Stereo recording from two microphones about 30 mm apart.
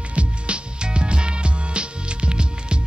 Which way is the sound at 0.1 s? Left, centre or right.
Right.